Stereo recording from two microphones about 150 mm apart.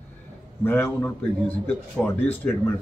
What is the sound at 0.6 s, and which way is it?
Speech, 15° left (ahead or behind).